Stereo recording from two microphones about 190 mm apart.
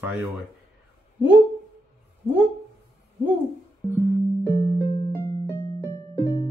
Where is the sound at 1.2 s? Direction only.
10° right (ahead or behind).